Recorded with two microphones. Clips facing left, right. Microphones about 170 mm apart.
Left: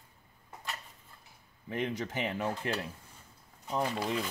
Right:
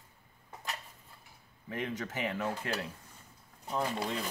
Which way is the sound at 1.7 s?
20° left (ahead or behind).